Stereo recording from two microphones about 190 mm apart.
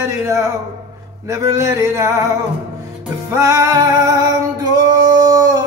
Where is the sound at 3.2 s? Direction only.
15° right (ahead or behind).